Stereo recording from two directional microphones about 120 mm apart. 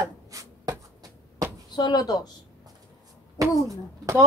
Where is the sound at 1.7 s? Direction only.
35° left (ahead or behind).